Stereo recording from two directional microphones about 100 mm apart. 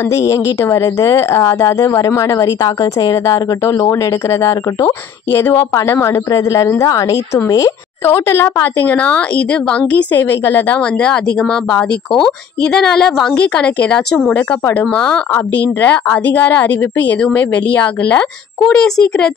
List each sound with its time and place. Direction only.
0.1 s speech: 30° left (ahead or behind)
8.0 s a woman's voice: 25° left (ahead or behind)
11.7 s a woman's voice: 5° left (ahead or behind)